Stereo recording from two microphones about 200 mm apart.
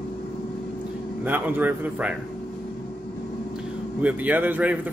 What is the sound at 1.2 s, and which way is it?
Speech, 10° right (ahead or behind).